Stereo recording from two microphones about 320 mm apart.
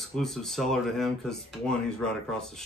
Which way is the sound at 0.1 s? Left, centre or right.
Centre.